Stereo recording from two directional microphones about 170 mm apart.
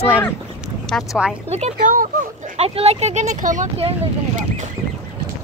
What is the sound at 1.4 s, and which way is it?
Speech, 40° right (ahead or behind).